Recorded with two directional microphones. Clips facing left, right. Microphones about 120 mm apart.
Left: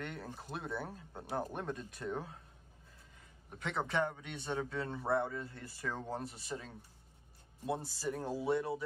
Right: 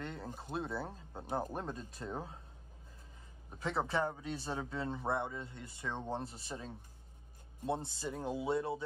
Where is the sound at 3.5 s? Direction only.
35° right (ahead or behind).